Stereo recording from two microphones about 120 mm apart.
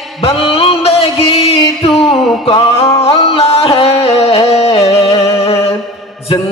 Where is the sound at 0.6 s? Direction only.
55° left (ahead or behind).